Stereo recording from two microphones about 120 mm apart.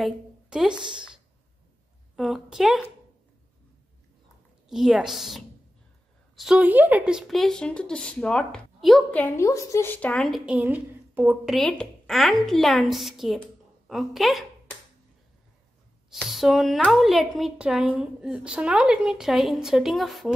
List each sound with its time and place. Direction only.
0.0 s a woman's voice: 5° right (ahead or behind)
2.1 s speech: centre (ahead or behind)
4.6 s a woman's voice: 5° right (ahead or behind)
6.6 s speech: 15° right (ahead or behind); by 9.0 s 5° left (ahead or behind)
9.4 s a woman's voice: 25° left (ahead or behind)
10.0 s speech: 5° left (ahead or behind)
10.5 s a woman's voice: 15° right (ahead or behind)
11.4 s speech: 5° left (ahead or behind)
16.1 s speech: centre (ahead or behind)